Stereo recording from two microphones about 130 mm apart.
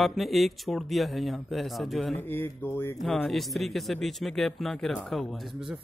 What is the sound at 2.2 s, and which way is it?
Speech, 15° left (ahead or behind).